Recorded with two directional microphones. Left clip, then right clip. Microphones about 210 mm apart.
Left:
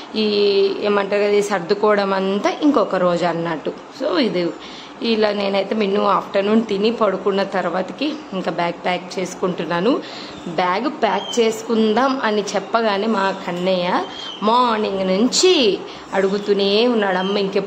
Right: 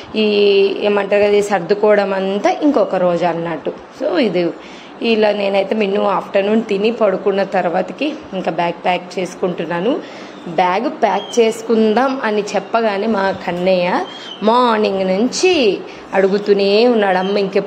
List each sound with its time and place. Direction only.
0.5 s a woman's voice: 10° right (ahead or behind)